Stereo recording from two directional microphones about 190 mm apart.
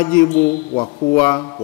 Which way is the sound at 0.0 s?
15° left (ahead or behind).